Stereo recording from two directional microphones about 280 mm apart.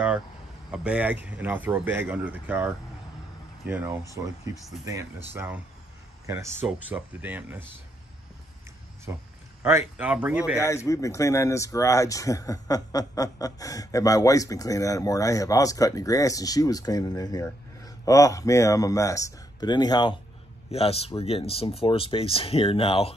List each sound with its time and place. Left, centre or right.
0.7 s a man's voice: centre
5.3 s speech: centre
9.1 s a man's voice: centre
10.6 s speech: centre